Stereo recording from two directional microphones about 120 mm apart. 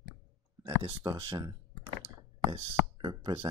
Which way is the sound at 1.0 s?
40° right (ahead or behind).